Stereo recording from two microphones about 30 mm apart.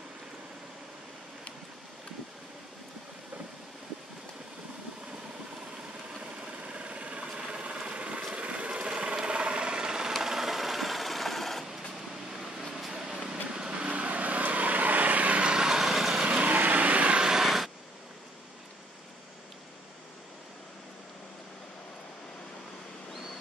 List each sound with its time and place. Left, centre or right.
6.4 s engine: right
7.2 s a sound: right
7.7 s ratchet: right
8.3 s a sound: right
10.2 s sewing machine: centre
12.4 s vehicle: centre
12.7 s a sound: centre
13.8 s vehicle: right
15.5 s vehicle: right
15.8 s vehicle: centre
16.3 s vehicle: right
16.5 s vehicle: right
17.4 s vehicle: centre